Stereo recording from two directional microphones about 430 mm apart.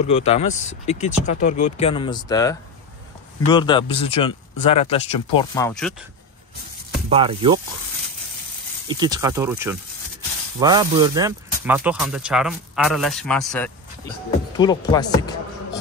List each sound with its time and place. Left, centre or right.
0.0 s speech: centre
3.5 s speech: centre
7.1 s speech: centre
8.8 s speech: centre